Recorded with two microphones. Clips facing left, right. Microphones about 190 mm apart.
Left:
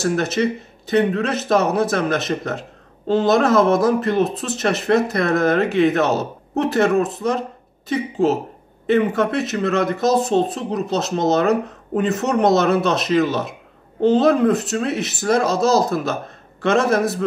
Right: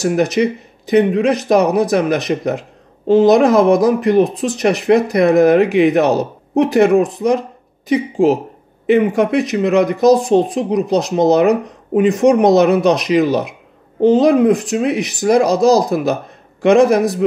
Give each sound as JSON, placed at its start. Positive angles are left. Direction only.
{"t": 0.0, "sound": "speech", "side_deg": -15}